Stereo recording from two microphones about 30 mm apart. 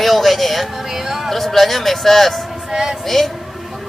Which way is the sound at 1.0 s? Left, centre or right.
Centre.